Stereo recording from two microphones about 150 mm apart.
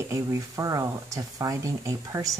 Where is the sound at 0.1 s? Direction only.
20° right (ahead or behind).